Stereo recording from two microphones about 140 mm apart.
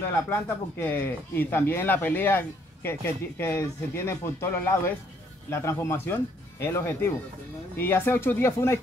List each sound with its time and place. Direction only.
0.3 s speech: 15° left (ahead or behind)